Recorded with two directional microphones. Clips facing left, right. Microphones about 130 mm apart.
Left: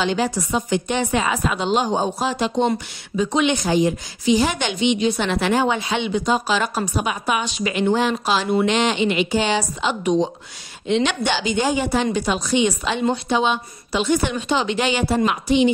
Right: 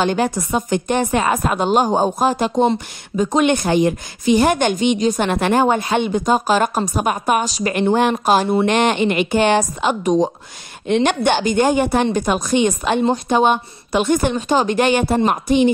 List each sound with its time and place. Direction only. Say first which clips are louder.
0.0 s a woman's voice: right 3 dB; 50° right (ahead or behind)